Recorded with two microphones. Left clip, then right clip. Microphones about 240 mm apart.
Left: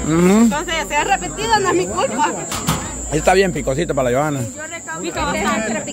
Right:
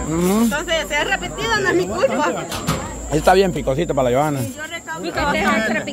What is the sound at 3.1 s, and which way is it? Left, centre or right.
A man's voice, centre.